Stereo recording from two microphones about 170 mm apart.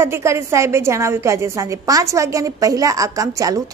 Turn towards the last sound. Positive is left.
turn(degrees=-20)  # may be behind; listen again after turning